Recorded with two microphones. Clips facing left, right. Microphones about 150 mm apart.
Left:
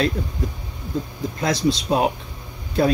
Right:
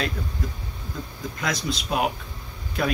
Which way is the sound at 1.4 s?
30° left (ahead or behind).